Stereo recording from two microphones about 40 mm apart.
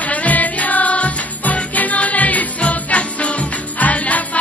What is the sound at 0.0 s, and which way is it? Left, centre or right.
Music, left.